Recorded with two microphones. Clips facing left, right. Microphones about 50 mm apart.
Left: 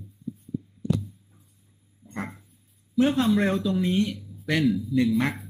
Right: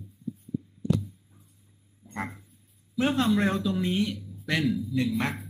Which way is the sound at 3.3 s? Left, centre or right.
Centre.